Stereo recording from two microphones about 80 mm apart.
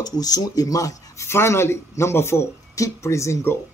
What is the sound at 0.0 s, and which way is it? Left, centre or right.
Speech, left.